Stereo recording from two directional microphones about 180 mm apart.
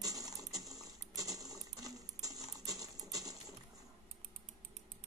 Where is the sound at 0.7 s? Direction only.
20° right (ahead or behind).